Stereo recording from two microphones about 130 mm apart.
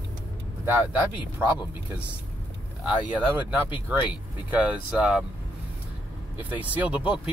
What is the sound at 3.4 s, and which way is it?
Speech, 10° right (ahead or behind).